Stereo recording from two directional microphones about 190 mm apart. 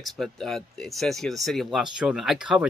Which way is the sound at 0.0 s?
Centre (ahead or behind).